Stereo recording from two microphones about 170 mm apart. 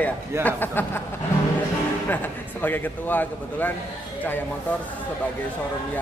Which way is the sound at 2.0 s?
10° left (ahead or behind).